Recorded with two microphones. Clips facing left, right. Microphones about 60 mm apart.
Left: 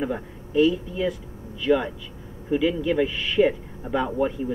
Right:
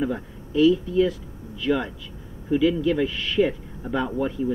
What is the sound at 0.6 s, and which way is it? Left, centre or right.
Speech, centre.